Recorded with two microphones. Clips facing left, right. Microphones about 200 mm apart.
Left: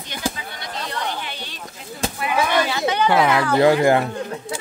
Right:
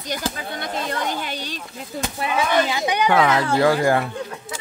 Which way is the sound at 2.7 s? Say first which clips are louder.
Left 1 dB; 15° right (ahead or behind).